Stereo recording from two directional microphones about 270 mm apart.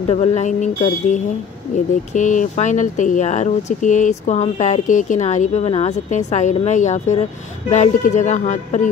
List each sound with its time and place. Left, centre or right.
0.1 s speech: left